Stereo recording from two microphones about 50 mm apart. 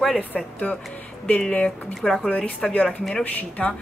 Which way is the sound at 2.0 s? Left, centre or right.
Centre.